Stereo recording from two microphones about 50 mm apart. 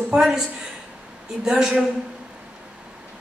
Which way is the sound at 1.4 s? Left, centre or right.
Centre.